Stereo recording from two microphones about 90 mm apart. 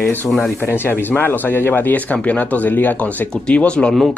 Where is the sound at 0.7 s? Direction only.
25° left (ahead or behind).